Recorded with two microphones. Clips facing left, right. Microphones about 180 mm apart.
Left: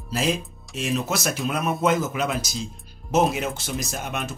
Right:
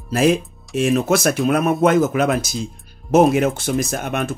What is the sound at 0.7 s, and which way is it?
Speech, 55° right (ahead or behind).